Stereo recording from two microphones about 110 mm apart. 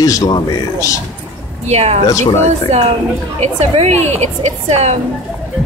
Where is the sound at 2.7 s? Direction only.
70° right (ahead or behind).